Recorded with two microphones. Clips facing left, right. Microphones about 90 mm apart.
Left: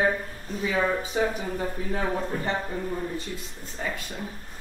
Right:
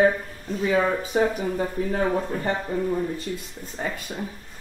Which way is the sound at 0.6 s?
40° right (ahead or behind).